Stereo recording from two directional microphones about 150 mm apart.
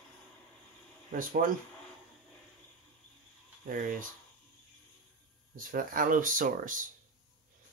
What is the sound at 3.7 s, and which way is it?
Speech, 75° right (ahead or behind).